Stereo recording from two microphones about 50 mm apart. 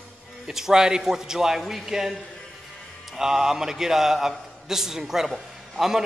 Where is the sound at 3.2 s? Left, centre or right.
Centre.